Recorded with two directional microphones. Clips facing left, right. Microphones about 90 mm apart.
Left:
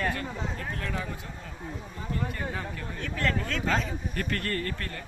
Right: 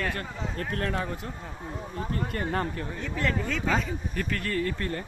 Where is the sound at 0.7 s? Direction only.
50° right (ahead or behind).